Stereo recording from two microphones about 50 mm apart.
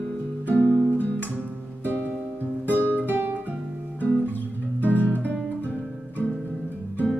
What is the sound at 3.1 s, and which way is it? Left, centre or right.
Guitar, right.